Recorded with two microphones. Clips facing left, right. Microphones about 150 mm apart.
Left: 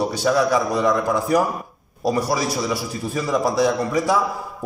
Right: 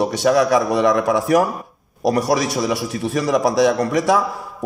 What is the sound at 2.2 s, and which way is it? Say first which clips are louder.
A man's voice: right 4 dB; 90° right.